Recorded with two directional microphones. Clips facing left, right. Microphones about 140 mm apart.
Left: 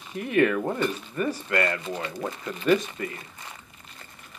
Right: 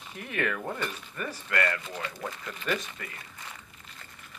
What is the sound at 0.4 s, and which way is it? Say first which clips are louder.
Speech: left 9 dB; 20° left (ahead or behind).